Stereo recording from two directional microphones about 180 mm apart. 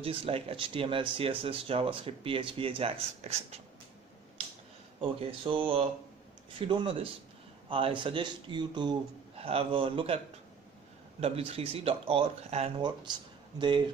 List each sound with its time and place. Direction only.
0.0 s speech: 30° right (ahead or behind)
5.0 s speech: 30° right (ahead or behind)